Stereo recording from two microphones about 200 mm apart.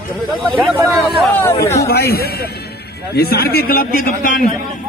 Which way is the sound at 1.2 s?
10° left (ahead or behind).